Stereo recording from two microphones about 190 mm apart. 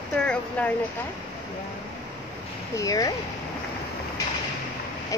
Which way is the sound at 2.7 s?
20° left (ahead or behind).